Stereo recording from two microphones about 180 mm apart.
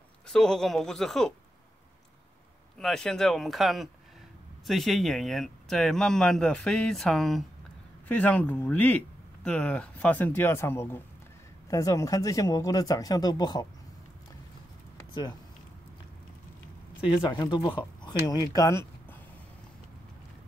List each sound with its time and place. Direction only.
0.3 s speech: 5° left (ahead or behind)
2.8 s speech: centre (ahead or behind); by 13.7 s 20° left (ahead or behind)
17.2 s speech: 25° left (ahead or behind)